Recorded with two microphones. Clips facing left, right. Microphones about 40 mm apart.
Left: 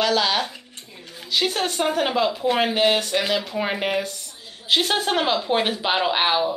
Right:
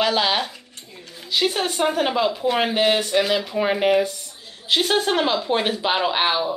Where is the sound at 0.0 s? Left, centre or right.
Centre.